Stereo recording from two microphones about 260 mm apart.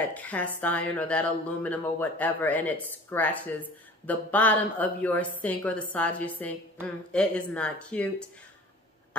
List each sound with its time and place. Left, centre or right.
0.0 s speech: centre